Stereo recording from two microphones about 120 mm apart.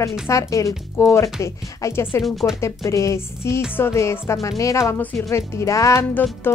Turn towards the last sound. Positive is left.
turn(degrees=20)  # may be behind; listen again after turning